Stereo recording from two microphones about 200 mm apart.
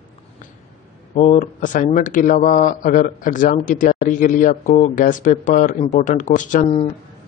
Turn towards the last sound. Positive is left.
turn(degrees=35)  # may be behind; listen again after turning